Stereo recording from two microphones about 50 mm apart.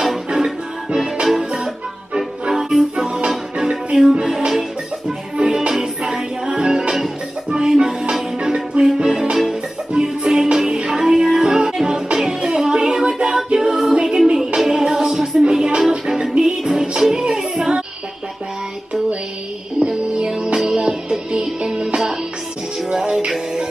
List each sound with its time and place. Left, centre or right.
0.3 s music: centre
5.4 s music: right; by 15.2 s centre
15.7 s music: right
19.8 s music: centre